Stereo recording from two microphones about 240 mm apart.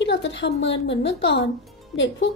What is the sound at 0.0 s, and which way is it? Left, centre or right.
A woman's voice, left.